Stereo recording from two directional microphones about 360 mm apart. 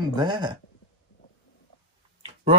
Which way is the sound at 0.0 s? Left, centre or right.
Centre.